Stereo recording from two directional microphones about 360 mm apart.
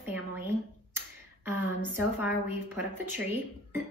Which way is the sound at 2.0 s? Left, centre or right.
Centre.